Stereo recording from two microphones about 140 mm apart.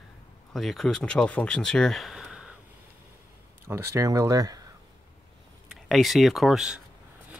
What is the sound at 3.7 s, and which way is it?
Speech, 20° right (ahead or behind).